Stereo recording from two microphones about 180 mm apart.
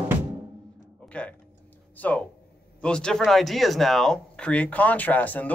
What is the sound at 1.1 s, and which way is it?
Tick-tock, 5° left (ahead or behind).